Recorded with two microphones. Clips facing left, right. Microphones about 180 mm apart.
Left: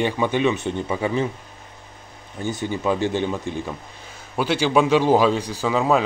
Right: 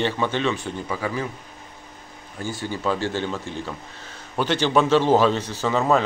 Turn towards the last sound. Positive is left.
turn(degrees=5)  # may be behind; listen again after turning